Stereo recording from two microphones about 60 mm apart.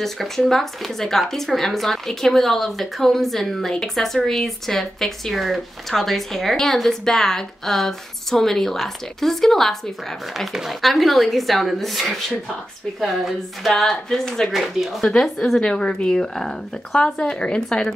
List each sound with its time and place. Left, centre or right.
0.0 s speech: centre
10.3 s speech: centre